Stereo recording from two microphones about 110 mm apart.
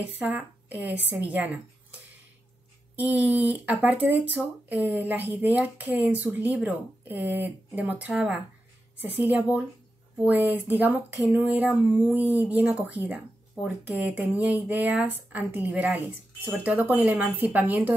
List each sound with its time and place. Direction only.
0.0 s a woman's voice: 10° right (ahead or behind)
3.0 s speech: 15° right (ahead or behind)